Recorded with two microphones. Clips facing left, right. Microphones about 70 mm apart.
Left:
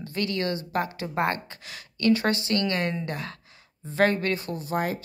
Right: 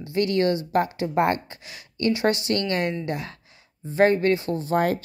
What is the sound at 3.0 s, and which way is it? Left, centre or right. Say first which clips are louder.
Speech: right 3 dB; left.